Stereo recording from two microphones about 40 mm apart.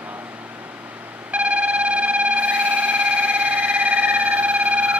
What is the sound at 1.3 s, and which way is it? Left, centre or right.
Telephone dialing, right.